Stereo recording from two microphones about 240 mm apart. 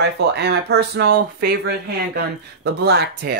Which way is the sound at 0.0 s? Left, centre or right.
Right.